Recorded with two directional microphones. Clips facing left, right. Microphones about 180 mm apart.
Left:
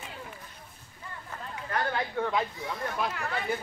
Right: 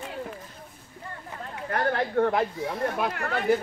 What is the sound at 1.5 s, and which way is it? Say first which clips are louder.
Speech: right 5 dB; 55° right (ahead or behind).